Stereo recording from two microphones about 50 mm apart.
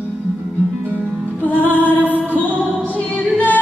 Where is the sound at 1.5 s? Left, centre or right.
Left.